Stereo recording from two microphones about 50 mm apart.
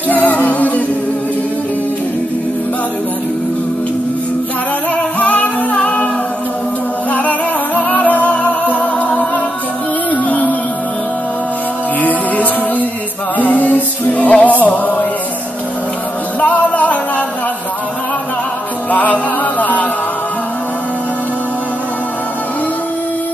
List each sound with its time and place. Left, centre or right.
0.1 s music: left
5.2 s singing: left
7.1 s music: left
12.0 s music: left
16.3 s music: left
18.9 s music: left